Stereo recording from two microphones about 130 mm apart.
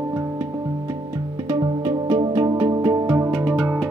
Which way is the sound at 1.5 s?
30° right (ahead or behind).